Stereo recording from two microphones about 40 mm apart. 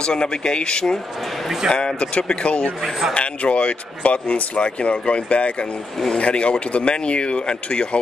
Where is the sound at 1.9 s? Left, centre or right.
Left.